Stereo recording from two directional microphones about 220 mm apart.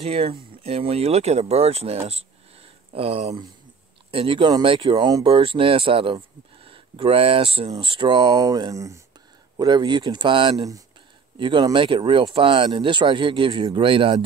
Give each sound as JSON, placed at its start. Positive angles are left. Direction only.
{"t": 0.0, "sound": "speech", "side_deg": -25}